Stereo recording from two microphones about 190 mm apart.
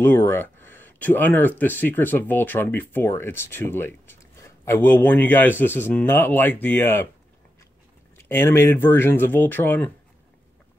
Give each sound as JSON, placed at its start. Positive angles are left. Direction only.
{"t": 0.0, "sound": "speech", "side_deg": 10}
{"t": 8.2, "sound": "speech", "side_deg": 10}